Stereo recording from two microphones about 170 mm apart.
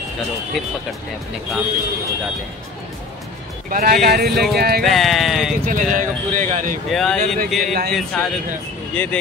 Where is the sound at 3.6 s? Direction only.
55° right (ahead or behind).